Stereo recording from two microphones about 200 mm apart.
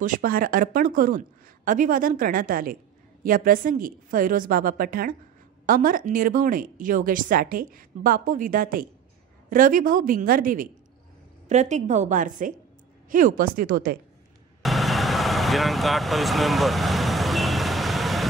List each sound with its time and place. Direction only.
0.0 s a woman's voice: 45° right (ahead or behind)
14.6 s vehicle: centre (ahead or behind)